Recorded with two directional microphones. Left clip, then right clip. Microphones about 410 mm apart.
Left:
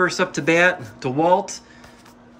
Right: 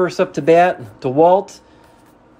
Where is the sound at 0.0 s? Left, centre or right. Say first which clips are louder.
Right 3 dB; centre.